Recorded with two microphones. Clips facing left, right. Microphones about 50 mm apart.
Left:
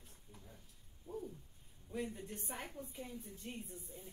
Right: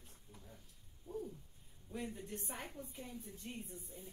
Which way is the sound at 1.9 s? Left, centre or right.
Centre.